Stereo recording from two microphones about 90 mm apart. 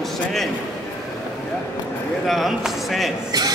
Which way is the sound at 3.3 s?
50° right (ahead or behind).